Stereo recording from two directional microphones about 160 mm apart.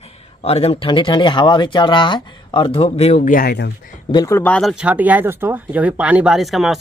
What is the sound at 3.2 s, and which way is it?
Speech, 60° left (ahead or behind).